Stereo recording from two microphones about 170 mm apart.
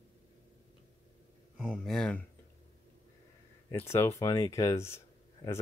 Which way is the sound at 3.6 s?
15° left (ahead or behind).